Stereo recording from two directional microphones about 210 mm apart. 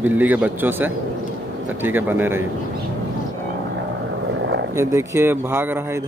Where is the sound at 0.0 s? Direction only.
10° right (ahead or behind).